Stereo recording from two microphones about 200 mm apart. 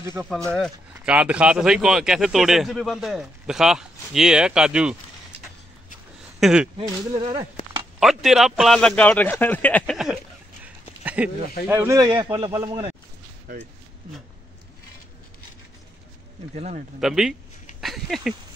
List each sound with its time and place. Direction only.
0.0 s speech: 15° right (ahead or behind)
0.5 s speech: centre (ahead or behind)
6.4 s speech: 5° right (ahead or behind)
6.8 s a man's voice: 30° right (ahead or behind)
8.0 s speech: centre (ahead or behind)
10.6 s a sound: 5° right (ahead or behind)
11.6 s a man's voice: 10° right (ahead or behind)
16.5 s speech: 35° right (ahead or behind)
17.0 s speech: centre (ahead or behind)